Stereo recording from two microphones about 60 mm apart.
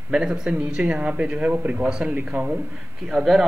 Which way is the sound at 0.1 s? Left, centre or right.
Centre.